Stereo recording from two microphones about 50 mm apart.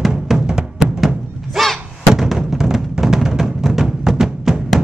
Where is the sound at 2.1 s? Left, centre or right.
Centre.